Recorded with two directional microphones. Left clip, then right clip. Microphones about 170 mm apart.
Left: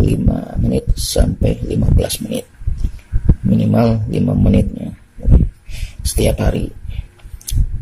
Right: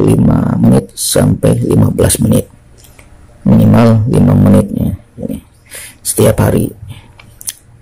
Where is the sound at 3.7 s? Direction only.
10° right (ahead or behind).